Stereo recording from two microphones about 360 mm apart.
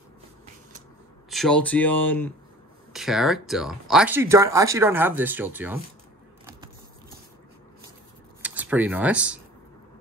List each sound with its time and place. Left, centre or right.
1.3 s speech: centre
8.4 s speech: centre